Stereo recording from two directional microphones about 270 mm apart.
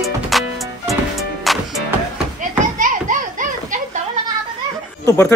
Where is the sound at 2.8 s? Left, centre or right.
Right.